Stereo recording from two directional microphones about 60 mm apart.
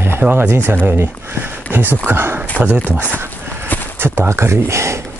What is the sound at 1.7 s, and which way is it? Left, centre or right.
Speech, right.